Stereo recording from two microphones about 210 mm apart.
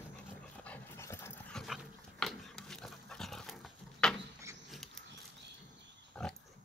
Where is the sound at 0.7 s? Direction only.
10° left (ahead or behind).